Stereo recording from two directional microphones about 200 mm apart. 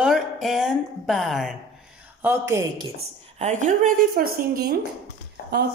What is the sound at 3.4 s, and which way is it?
A woman's voice, 40° right (ahead or behind).